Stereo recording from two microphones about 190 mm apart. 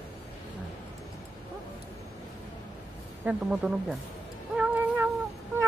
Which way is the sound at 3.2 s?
5° right (ahead or behind).